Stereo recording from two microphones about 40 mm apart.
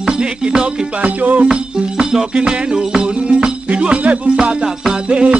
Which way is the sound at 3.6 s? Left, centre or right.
Right.